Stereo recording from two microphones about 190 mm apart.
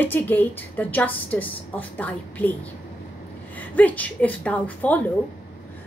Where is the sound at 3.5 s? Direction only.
10° left (ahead or behind).